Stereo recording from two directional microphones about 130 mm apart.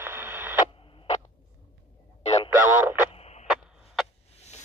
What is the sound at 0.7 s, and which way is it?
Radio, 45° left (ahead or behind).